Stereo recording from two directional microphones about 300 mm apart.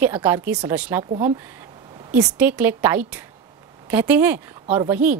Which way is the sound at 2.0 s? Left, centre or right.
Centre.